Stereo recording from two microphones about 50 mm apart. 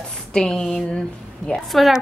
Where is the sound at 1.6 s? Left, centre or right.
Centre.